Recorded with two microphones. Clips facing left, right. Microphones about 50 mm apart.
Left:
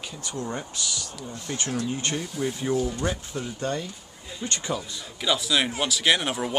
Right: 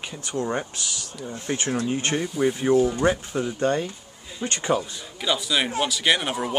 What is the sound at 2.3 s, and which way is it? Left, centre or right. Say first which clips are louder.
Speech: right 8 dB; centre.